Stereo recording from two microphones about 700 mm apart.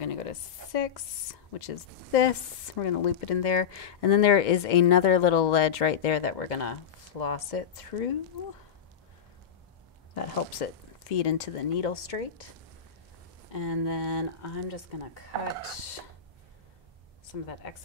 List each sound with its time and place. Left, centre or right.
0.0 s speech: left
2.7 s speech: left
10.1 s speech: left
13.5 s speech: left